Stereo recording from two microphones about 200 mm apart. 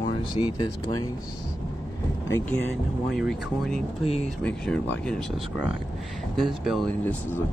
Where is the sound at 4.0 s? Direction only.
30° left (ahead or behind).